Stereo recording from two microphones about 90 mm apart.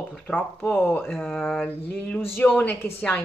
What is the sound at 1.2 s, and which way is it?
Speech, 5° left (ahead or behind).